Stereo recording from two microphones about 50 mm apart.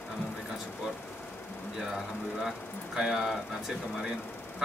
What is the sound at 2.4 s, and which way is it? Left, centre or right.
Speech, centre.